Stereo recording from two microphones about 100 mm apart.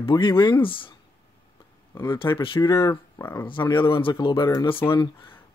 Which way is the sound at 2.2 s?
30° left (ahead or behind).